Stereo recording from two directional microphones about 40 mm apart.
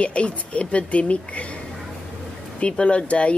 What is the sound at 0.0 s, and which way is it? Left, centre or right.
Speech, left.